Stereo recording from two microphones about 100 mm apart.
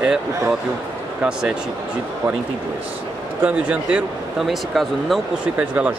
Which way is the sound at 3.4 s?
10° right (ahead or behind).